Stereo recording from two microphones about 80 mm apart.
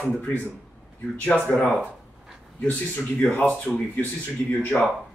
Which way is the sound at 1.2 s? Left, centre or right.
Centre.